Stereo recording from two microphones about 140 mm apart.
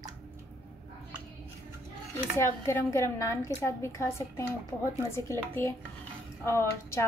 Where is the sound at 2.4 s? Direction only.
20° left (ahead or behind).